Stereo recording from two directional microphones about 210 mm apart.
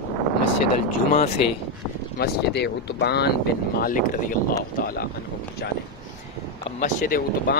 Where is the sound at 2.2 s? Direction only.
50° left (ahead or behind).